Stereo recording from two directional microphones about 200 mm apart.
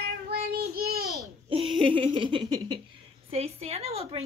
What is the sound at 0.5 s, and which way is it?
Child singing, 50° right (ahead or behind).